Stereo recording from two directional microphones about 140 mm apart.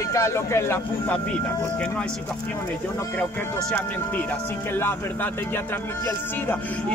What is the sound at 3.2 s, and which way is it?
Speech, 10° left (ahead or behind).